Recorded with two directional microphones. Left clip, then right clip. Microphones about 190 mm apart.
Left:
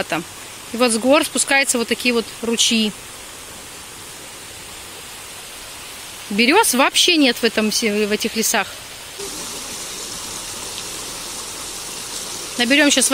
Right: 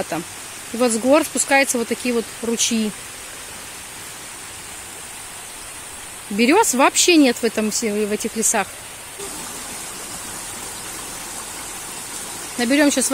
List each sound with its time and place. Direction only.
0.1 s speech: 5° right (ahead or behind)
6.3 s speech: centre (ahead or behind)
12.5 s speech: 10° right (ahead or behind)